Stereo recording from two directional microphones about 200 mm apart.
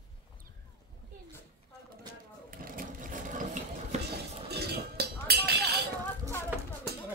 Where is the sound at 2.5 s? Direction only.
45° right (ahead or behind).